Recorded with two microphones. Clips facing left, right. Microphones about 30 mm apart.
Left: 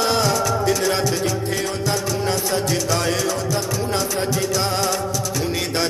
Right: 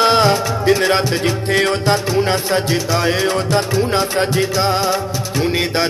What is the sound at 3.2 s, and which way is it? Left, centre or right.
Music, right.